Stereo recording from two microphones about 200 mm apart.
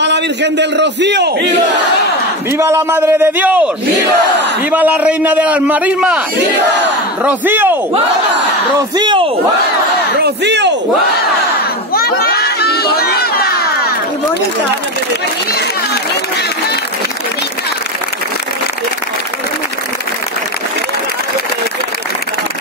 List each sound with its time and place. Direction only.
0.0 s a man's voice: 60° right (ahead or behind)
2.5 s a man's voice: 15° right (ahead or behind)
7.2 s a man's voice: 10° right (ahead or behind)
8.7 s speech: 20° right (ahead or behind)
10.2 s a man's voice: 60° right (ahead or behind)
11.9 s crowd: 50° left (ahead or behind)